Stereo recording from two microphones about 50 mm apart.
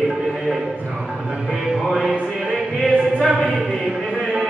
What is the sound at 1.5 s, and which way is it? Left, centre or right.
Music, centre.